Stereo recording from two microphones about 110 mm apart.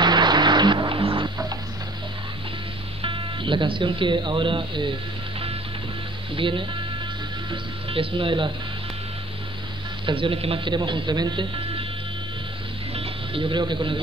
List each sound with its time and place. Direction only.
0.0 s music: 40° right (ahead or behind)
3.0 s speech: 50° right (ahead or behind)
6.3 s speech: 50° right (ahead or behind)
7.9 s speech: 55° right (ahead or behind)
10.0 s speech: 50° right (ahead or behind)
12.9 s music: 55° right (ahead or behind)